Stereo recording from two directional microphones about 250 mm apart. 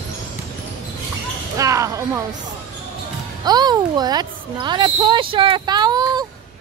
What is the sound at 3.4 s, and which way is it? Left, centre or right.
Speech, centre.